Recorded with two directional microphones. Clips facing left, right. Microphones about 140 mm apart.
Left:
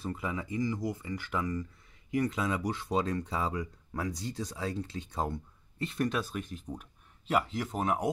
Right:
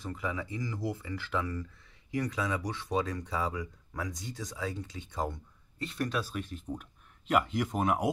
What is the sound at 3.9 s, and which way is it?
Speech, 30° left (ahead or behind).